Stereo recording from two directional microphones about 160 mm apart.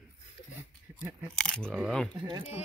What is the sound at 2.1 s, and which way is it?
Speech, 30° right (ahead or behind).